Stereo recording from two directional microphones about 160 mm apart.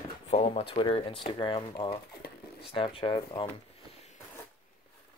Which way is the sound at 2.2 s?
75° left (ahead or behind).